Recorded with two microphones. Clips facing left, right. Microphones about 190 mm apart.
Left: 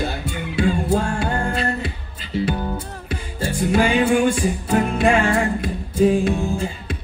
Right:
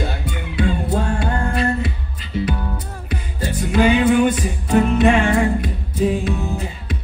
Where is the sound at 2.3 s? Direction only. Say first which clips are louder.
Left 1 dB; 25° left (ahead or behind).